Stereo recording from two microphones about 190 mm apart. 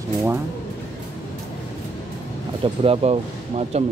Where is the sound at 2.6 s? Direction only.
30° right (ahead or behind).